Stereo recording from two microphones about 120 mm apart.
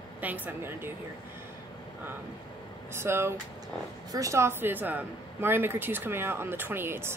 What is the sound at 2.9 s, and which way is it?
Speech, 20° right (ahead or behind).